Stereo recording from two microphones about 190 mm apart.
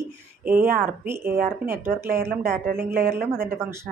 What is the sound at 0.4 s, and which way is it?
A woman's voice, 10° right (ahead or behind).